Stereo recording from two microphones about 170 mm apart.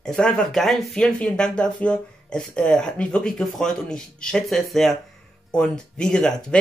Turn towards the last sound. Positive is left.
turn(degrees=5)  # may be behind; listen again after turning